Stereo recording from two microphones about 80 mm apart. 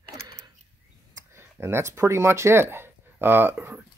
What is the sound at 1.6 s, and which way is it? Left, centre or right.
Speech, right.